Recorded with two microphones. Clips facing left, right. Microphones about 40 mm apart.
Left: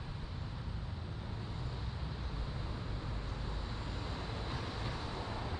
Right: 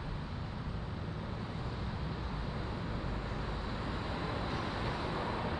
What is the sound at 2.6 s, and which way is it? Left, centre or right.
Vehicle, right.